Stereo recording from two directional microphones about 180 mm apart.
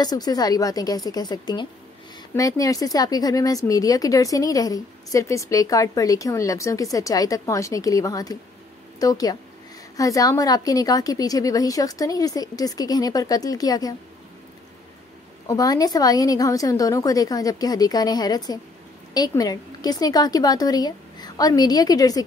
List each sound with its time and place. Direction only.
0.0 s speech: 20° left (ahead or behind)
15.4 s speech: 20° left (ahead or behind)